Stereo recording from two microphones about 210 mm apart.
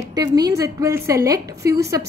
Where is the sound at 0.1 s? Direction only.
20° right (ahead or behind).